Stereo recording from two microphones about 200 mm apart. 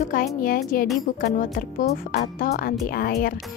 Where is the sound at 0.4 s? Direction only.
45° left (ahead or behind).